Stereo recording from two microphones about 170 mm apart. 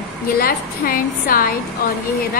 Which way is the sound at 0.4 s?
60° left (ahead or behind).